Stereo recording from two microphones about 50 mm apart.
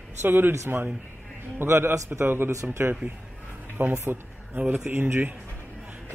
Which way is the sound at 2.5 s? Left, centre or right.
Right.